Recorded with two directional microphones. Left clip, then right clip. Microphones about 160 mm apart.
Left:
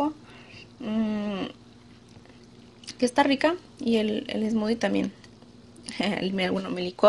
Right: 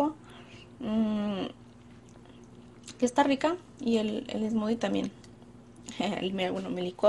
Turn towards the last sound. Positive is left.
turn(degrees=40)  # may be behind; listen again after turning